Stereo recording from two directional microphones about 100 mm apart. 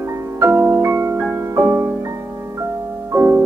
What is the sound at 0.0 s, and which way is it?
Music, 25° right (ahead or behind).